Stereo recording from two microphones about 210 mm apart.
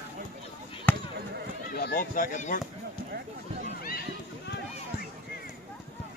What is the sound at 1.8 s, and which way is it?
Speech, 45° left (ahead or behind).